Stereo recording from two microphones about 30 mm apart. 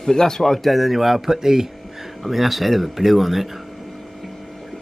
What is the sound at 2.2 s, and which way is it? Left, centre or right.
Speech, centre.